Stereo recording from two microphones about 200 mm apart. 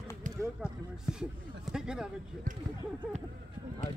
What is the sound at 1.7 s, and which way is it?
Speech, 5° right (ahead or behind).